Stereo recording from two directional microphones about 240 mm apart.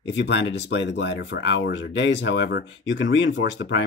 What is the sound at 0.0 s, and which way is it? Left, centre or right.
Speech, left.